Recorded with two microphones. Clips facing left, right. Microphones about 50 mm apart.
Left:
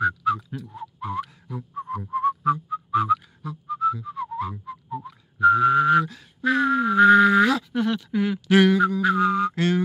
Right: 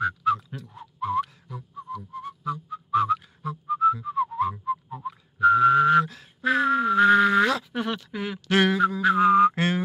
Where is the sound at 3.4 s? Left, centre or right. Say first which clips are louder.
Right 2 dB; centre.